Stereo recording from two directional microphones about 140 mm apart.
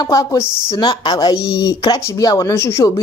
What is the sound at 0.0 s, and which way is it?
Speech, 25° left (ahead or behind).